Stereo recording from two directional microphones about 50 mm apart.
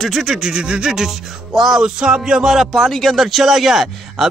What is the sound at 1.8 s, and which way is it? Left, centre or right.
Speech, centre.